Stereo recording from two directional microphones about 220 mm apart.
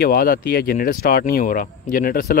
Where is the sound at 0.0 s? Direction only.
40° left (ahead or behind).